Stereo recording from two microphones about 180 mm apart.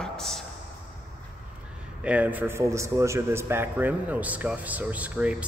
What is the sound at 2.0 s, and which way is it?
A man's voice, 10° right (ahead or behind).